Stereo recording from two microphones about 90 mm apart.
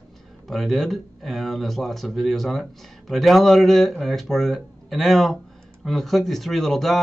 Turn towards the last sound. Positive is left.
turn(degrees=0)  # may be behind; listen again after turning